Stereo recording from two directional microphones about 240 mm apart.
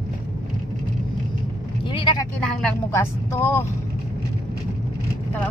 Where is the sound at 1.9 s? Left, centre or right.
Left.